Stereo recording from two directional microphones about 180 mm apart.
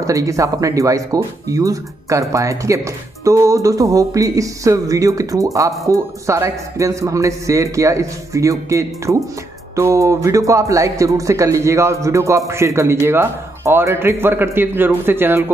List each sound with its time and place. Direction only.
0.0 s speech: 20° right (ahead or behind)